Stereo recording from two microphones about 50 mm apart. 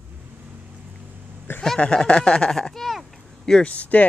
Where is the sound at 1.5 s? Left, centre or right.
Left.